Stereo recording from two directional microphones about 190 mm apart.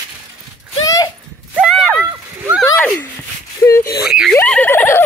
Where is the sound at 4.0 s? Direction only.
5° right (ahead or behind).